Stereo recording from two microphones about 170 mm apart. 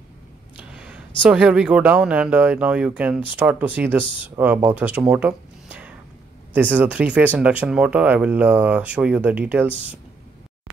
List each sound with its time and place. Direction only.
0.7 s speech: 5° right (ahead or behind)
4.0 s speech: 30° left (ahead or behind)
4.6 s speech: 10° right (ahead or behind)